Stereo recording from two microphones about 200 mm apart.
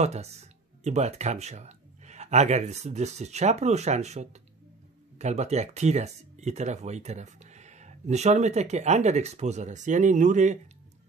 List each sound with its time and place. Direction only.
0.0 s speech: 35° right (ahead or behind)